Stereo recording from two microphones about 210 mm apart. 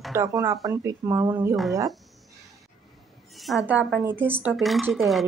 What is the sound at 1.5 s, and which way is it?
Speech, centre (ahead or behind).